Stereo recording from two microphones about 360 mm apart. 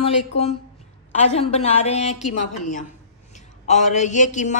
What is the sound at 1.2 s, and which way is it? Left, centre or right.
Speech, centre.